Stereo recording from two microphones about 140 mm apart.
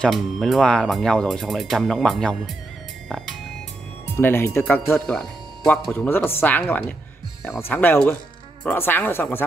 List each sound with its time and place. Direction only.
0.0 s speech: centre (ahead or behind)
4.2 s speech: 15° left (ahead or behind)
5.0 s speech: 5° left (ahead or behind)
5.9 s speech: 15° left (ahead or behind)